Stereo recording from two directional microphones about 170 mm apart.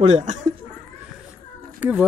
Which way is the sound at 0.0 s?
45° right (ahead or behind).